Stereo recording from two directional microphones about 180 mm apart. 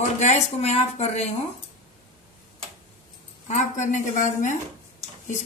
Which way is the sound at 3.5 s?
40° left (ahead or behind).